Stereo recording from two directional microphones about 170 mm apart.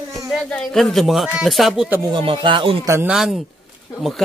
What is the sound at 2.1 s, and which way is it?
Speech, 30° right (ahead or behind).